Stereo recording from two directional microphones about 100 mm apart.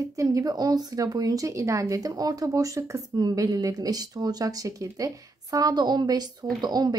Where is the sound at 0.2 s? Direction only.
35° right (ahead or behind).